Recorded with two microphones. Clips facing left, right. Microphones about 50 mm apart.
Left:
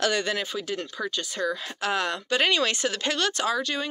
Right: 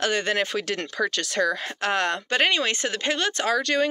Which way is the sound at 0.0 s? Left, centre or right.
Right.